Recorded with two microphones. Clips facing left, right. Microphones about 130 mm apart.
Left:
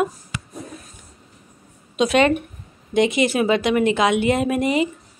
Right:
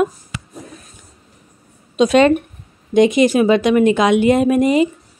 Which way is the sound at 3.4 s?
20° left (ahead or behind).